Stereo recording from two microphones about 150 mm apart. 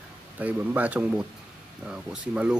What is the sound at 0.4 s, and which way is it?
Speech, 10° right (ahead or behind).